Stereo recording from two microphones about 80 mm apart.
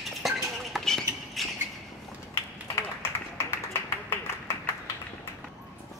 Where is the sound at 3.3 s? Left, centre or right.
Left.